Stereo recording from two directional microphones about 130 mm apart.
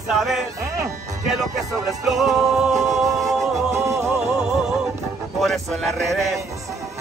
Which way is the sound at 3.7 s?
20° right (ahead or behind).